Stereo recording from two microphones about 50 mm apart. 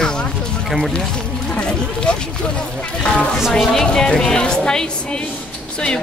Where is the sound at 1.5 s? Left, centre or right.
Left.